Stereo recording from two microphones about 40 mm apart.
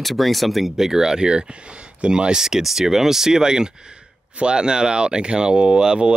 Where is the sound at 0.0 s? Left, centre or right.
Centre.